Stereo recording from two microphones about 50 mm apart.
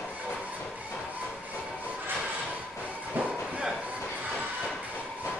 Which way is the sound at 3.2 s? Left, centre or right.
Right.